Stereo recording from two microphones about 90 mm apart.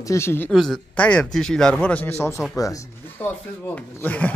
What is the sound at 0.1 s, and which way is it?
Speech, 30° left (ahead or behind).